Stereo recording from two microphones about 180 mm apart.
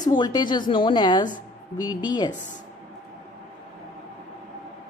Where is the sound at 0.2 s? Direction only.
25° left (ahead or behind).